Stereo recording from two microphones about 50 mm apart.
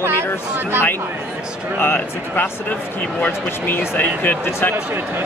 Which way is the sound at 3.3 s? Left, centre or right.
Left.